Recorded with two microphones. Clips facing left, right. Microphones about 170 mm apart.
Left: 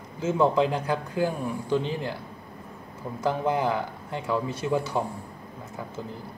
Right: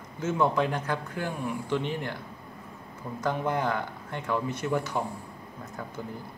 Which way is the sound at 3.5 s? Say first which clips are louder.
Left 3 dB; 10° left (ahead or behind).